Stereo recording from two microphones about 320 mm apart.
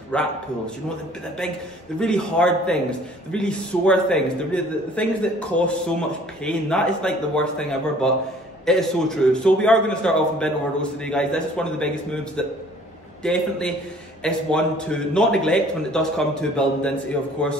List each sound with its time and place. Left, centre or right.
0.1 s a man's voice: centre
2.0 s a man's voice: centre